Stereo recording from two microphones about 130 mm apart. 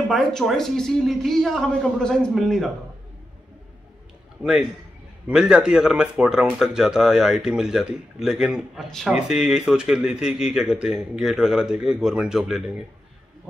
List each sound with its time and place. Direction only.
0.1 s speech: 5° left (ahead or behind)
4.4 s a man's voice: 5° right (ahead or behind)